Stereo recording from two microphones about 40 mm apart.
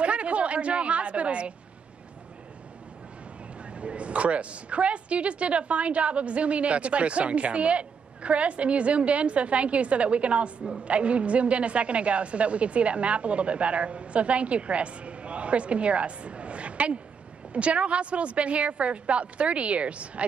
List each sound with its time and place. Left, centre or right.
0.0 s a woman's voice: right
3.7 s a woman's voice: right